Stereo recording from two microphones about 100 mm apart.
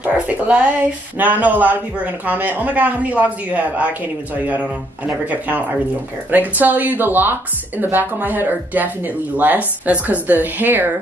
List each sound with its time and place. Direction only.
0.0 s speech: 15° right (ahead or behind)